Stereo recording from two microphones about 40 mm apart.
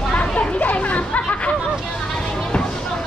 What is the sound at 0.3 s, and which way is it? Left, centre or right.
Chatter, left.